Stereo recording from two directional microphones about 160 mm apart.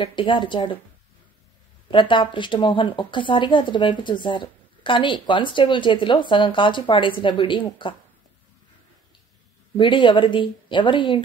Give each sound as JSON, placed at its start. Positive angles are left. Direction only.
{"t": 0.0, "sound": "speech", "side_deg": 30}
{"t": 1.9, "sound": "a woman's voice", "side_deg": 30}
{"t": 9.8, "sound": "a woman's voice", "side_deg": 30}